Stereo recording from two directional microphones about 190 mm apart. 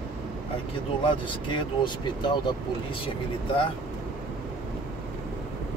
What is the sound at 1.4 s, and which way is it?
Speech, 25° left (ahead or behind).